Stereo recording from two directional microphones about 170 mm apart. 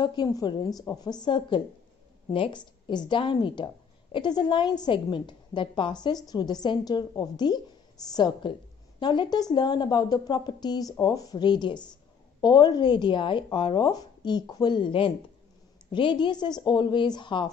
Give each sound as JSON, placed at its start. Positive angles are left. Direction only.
{"t": 0.0, "sound": "a woman's voice", "side_deg": 25}